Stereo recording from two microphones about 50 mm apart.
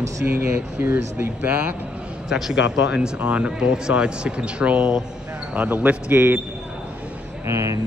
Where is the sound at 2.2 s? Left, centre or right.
Centre.